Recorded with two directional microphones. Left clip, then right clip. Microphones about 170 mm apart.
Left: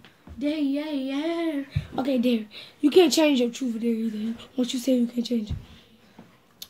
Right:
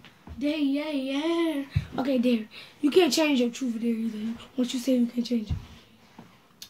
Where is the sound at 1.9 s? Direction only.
30° left (ahead or behind).